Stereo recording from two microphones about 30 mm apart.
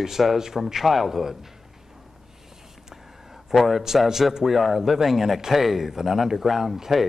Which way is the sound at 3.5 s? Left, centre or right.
Centre.